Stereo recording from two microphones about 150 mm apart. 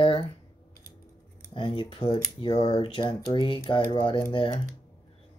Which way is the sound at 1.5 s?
35° left (ahead or behind).